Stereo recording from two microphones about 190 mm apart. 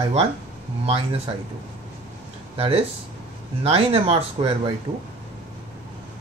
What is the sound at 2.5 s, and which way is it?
Speech, 30° right (ahead or behind).